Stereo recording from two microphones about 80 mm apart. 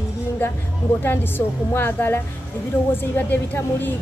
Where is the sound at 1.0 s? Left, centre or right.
Left.